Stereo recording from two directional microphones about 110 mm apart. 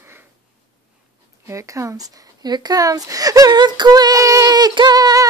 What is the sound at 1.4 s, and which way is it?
Speech, 30° right (ahead or behind).